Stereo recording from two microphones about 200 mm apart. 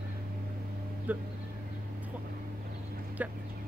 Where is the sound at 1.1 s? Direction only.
10° right (ahead or behind).